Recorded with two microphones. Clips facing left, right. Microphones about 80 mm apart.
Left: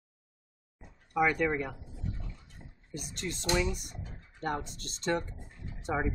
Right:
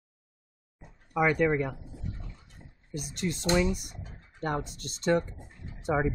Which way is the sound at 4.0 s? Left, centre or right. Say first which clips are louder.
Right 3 dB; right.